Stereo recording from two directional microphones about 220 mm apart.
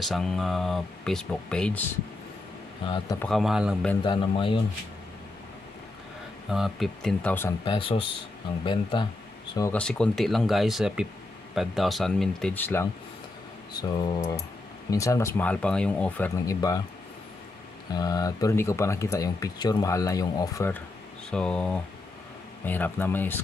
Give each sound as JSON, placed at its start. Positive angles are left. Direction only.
{"t": 0.0, "sound": "speech", "side_deg": 0}
{"t": 2.8, "sound": "speech", "side_deg": 20}
{"t": 3.2, "sound": "speech", "side_deg": 0}
{"t": 4.0, "sound": "speech", "side_deg": 25}
{"t": 6.5, "sound": "speech", "side_deg": 0}
{"t": 7.6, "sound": "speech", "side_deg": 20}
{"t": 9.7, "sound": "speech", "side_deg": 5}
{"t": 17.9, "sound": "speech", "side_deg": 15}